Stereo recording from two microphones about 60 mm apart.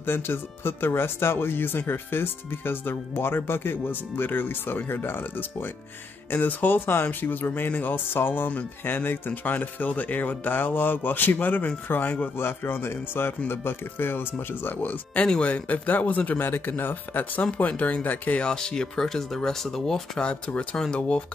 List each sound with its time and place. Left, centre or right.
0.0 s speech: left
15.2 s speech: centre
18.4 s speech: centre